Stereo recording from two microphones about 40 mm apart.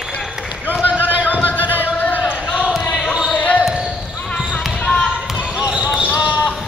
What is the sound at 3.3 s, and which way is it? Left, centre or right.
Basketball bounce, left.